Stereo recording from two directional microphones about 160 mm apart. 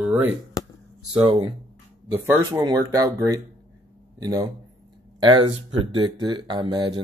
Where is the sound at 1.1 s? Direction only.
25° right (ahead or behind).